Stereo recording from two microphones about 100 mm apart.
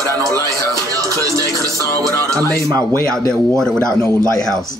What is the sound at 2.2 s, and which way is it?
Speech, 35° right (ahead or behind).